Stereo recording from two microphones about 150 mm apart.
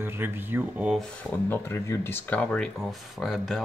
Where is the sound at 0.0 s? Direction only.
15° right (ahead or behind).